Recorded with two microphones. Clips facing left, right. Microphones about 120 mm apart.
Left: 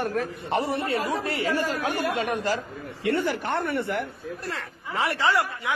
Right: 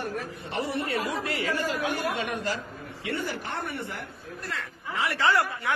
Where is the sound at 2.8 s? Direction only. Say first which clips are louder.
Left 7 dB; 65° left (ahead or behind).